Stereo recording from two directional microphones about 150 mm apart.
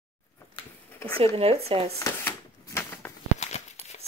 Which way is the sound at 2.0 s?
20° left (ahead or behind).